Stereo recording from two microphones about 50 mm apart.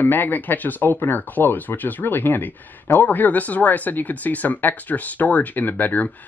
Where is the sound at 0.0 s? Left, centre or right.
Left.